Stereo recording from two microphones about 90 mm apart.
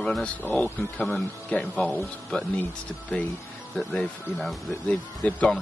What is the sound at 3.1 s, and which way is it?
Speech, 15° left (ahead or behind).